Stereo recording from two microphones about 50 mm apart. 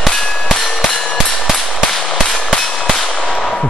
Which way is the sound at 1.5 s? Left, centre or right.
Centre.